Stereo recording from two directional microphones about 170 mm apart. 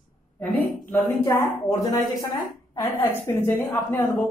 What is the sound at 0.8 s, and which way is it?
Speech, 10° left (ahead or behind).